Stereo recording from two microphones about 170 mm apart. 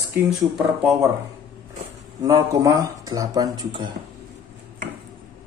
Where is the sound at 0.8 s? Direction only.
15° right (ahead or behind).